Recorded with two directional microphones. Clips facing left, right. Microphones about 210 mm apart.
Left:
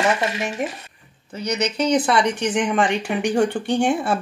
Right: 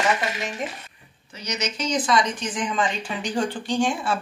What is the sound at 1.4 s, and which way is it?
Speech, 60° left (ahead or behind).